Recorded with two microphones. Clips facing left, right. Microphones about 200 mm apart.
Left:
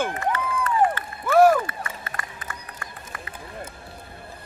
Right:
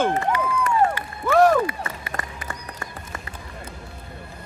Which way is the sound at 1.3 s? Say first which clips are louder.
Left 1 dB; 10° left (ahead or behind).